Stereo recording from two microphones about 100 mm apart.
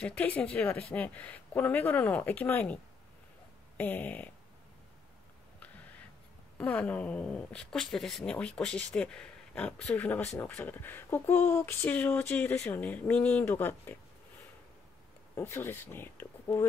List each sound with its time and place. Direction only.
0.0 s speech: 15° left (ahead or behind)
6.6 s speech: 15° left (ahead or behind)
15.3 s speech: 25° left (ahead or behind)